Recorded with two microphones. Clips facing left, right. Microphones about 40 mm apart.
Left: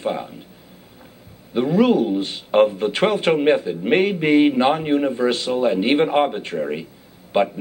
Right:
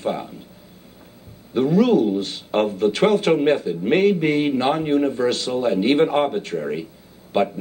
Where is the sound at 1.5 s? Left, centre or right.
Centre.